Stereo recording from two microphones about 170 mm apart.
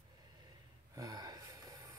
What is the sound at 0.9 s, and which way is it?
Gasp, 20° right (ahead or behind).